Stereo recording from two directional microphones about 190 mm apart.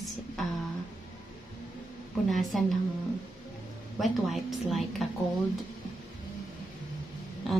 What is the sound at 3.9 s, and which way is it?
A woman's voice, centre (ahead or behind).